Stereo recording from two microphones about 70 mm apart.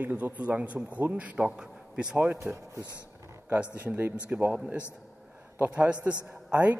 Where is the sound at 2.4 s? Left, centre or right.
Right.